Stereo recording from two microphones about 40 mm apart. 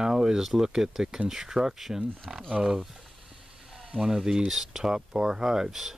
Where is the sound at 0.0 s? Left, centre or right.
Centre.